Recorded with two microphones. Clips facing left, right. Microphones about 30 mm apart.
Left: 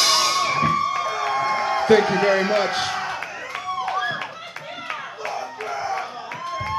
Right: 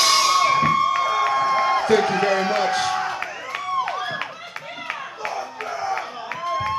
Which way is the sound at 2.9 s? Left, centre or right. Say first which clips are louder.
Right 2 dB; centre.